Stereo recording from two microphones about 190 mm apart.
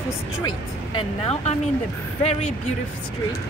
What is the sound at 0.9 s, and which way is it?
Speech, 30° left (ahead or behind).